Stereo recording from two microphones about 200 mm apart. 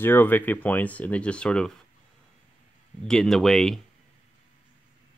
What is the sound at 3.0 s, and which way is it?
Speech, 5° left (ahead or behind).